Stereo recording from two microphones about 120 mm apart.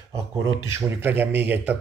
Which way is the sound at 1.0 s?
15° right (ahead or behind).